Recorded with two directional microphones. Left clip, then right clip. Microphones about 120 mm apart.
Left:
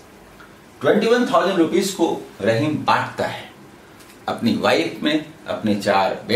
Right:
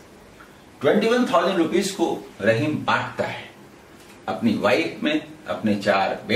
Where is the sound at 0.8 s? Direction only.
5° left (ahead or behind).